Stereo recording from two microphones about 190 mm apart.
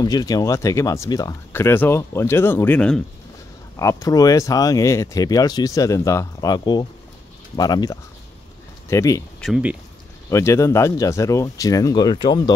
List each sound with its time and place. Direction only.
0.0 s speech: 20° left (ahead or behind)
9.4 s speech: 5° right (ahead or behind)
10.3 s speech: 15° left (ahead or behind)